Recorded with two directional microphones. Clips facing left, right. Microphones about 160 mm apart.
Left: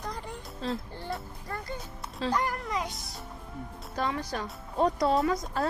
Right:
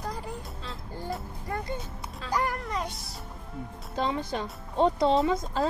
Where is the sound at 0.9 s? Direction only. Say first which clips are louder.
Right 2 dB; 10° right (ahead or behind).